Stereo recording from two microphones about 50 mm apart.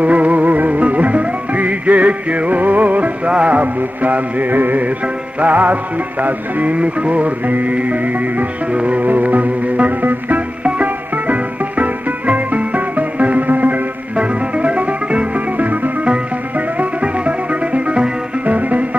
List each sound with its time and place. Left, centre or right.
0.0 s music: right